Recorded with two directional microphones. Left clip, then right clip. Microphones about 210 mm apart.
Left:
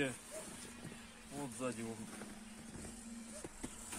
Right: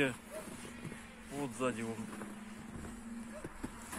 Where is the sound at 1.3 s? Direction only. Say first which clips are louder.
Right 6 dB; centre (ahead or behind).